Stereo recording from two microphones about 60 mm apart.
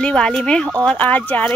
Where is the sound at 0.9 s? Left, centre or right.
Left.